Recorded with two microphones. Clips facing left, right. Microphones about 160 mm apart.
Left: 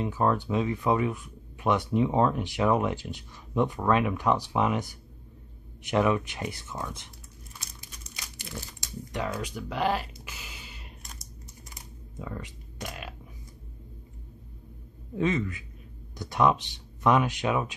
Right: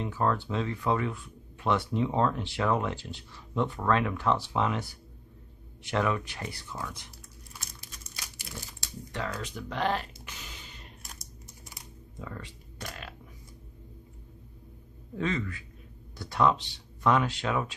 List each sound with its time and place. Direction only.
0.0 s speech: 15° left (ahead or behind)
9.1 s speech: 15° left (ahead or behind)
12.2 s a sound: 15° left (ahead or behind)
15.1 s speech: 15° left (ahead or behind)